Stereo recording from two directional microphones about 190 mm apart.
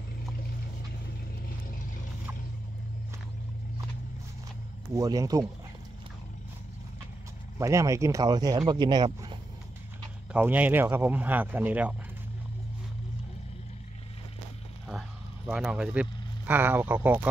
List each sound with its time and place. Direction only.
4.9 s speech: 20° right (ahead or behind)
7.5 s speech: 15° right (ahead or behind)
10.3 s speech: 10° right (ahead or behind)
14.9 s vehicle: 5° right (ahead or behind)